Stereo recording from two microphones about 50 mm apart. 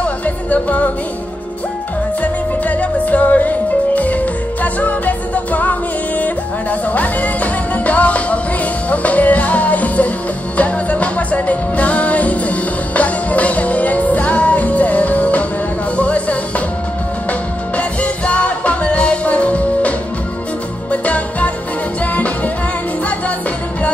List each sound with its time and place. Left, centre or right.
0.0 s music: left
2.2 s music: left